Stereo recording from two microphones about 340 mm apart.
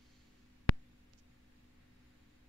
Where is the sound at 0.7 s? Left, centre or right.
Left.